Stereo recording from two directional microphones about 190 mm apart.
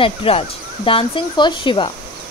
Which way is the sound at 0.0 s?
30° left (ahead or behind).